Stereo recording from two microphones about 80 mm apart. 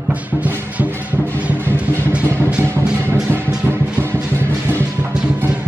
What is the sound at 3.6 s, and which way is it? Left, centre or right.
Music, right.